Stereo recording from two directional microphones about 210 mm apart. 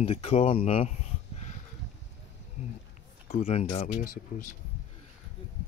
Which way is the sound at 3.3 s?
30° left (ahead or behind).